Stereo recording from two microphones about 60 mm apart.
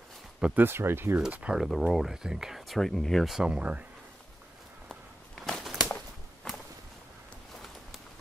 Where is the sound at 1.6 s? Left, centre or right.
Centre.